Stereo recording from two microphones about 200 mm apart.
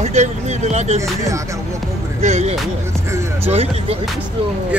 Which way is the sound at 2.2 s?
35° right (ahead or behind).